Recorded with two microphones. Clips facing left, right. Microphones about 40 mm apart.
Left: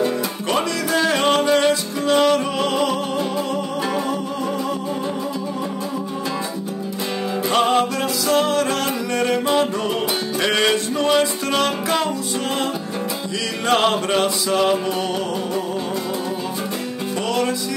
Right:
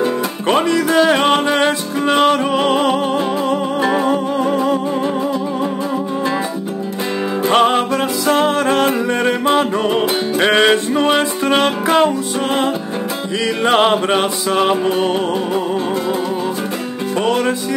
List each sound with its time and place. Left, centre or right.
0.0 s music: right
7.4 s music: right
13.7 s music: right
17.3 s music: right